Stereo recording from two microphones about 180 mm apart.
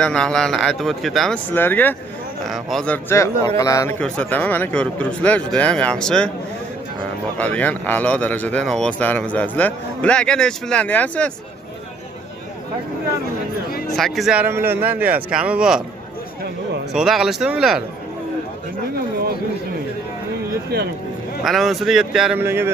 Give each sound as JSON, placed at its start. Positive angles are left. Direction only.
{"t": 0.0, "sound": "a man's voice", "side_deg": 5}
{"t": 4.0, "sound": "a man's voice", "side_deg": 5}
{"t": 7.3, "sound": "a man's voice", "side_deg": 10}
{"t": 13.9, "sound": "speech", "side_deg": 0}
{"t": 16.9, "sound": "speech", "side_deg": 0}
{"t": 20.7, "sound": "speech", "side_deg": -55}
{"t": 21.5, "sound": "speech", "side_deg": 0}